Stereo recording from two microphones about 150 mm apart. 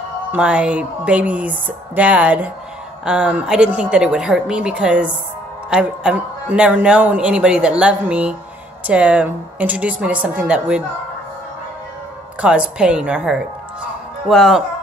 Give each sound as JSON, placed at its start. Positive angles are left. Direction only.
{"t": 0.3, "sound": "a man's voice", "side_deg": -10}
{"t": 12.4, "sound": "a man's voice", "side_deg": -5}